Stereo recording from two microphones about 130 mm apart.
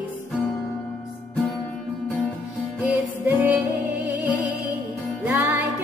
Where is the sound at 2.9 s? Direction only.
10° right (ahead or behind).